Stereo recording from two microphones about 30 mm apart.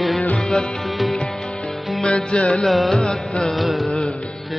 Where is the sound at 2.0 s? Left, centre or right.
Left.